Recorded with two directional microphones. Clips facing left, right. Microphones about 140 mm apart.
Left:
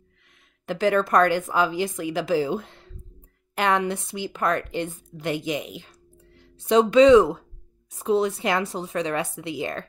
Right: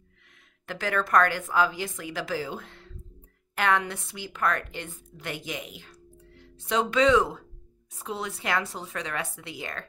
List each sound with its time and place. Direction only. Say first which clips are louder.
0.7 s a woman's voice: left 7 dB; 25° left (ahead or behind)